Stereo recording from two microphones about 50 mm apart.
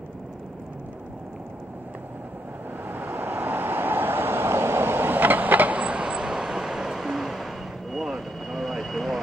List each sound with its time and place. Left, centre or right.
2.9 s vehicle: right
5.8 s vehicle: right; by 9.2 s centre